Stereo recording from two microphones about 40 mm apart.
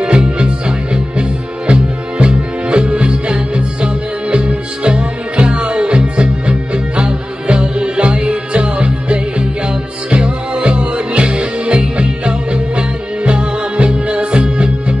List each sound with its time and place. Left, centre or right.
0.0 s music: right